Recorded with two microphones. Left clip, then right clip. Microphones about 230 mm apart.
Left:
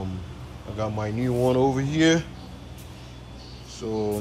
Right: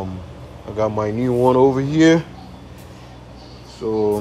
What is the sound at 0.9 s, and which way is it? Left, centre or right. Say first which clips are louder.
Speech: right 8 dB; right.